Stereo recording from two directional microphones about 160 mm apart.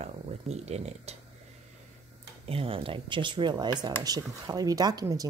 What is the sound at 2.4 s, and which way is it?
Speech, 35° right (ahead or behind).